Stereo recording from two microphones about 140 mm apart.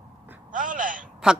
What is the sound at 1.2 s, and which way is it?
Speech, 5° right (ahead or behind).